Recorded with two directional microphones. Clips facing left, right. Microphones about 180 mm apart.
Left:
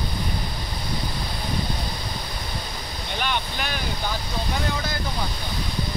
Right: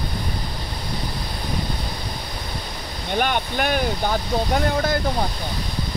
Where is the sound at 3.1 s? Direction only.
50° right (ahead or behind).